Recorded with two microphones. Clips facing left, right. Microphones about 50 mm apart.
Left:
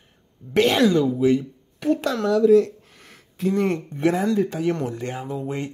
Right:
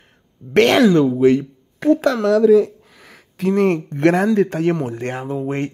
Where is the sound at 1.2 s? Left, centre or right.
Right.